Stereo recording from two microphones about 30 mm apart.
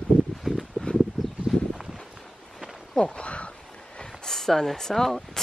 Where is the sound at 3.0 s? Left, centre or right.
Left.